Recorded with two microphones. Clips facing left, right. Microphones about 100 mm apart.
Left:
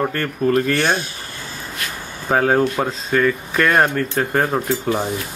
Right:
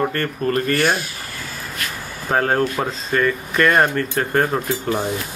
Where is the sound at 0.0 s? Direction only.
5° left (ahead or behind).